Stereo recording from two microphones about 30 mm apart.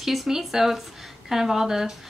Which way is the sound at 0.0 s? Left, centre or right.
Centre.